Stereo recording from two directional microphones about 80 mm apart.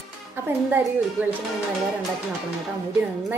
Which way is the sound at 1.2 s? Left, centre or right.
Right.